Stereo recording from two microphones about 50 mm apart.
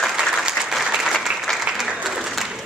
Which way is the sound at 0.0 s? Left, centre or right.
Centre.